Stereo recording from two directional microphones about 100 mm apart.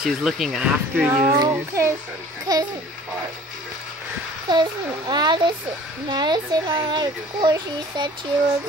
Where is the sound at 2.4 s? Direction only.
40° right (ahead or behind).